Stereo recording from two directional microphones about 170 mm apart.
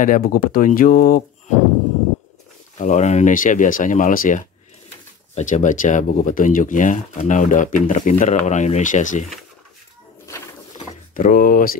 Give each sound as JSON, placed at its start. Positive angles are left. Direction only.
{"t": 0.0, "sound": "speech", "side_deg": 55}
{"t": 2.8, "sound": "speech", "side_deg": 45}
{"t": 10.2, "sound": "pigeon", "side_deg": 15}
{"t": 11.1, "sound": "speech", "side_deg": 55}